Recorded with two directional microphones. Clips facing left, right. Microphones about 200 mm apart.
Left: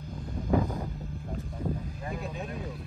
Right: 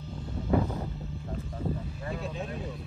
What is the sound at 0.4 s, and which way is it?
Vehicle, 15° left (ahead or behind).